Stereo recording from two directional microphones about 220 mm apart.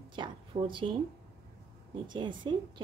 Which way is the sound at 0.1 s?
20° right (ahead or behind).